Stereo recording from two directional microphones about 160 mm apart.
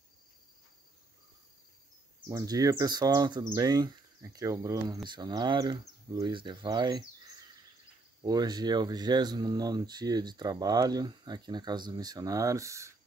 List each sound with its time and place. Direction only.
2.2 s speech: 25° right (ahead or behind)